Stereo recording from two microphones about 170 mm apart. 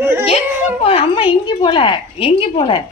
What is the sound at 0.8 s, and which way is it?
A woman's voice, 30° left (ahead or behind).